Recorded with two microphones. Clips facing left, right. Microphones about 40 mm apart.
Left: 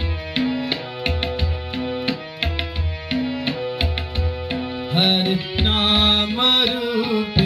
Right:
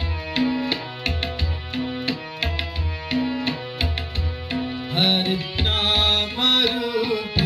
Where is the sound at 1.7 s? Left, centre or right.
Centre.